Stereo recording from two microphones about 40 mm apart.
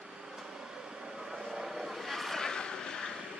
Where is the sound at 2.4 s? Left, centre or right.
Centre.